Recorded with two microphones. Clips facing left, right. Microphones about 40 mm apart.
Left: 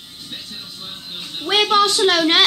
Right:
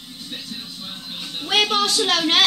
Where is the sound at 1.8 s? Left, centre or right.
Left.